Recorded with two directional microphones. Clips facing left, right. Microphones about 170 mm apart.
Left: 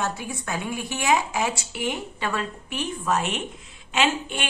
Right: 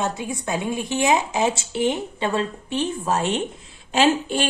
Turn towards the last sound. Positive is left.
turn(degrees=-35)  # may be behind; listen again after turning